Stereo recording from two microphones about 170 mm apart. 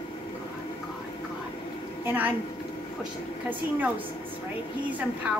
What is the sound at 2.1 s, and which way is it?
Speech, 10° right (ahead or behind).